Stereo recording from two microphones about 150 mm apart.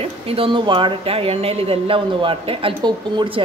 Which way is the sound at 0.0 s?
40° right (ahead or behind).